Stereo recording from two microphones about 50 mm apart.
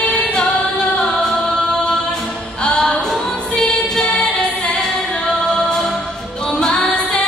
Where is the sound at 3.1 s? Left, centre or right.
Centre.